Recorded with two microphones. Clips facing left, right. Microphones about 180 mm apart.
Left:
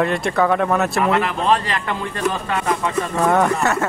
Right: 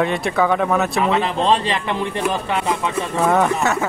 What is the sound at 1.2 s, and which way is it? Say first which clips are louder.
Speech: right 1 dB; 25° right (ahead or behind).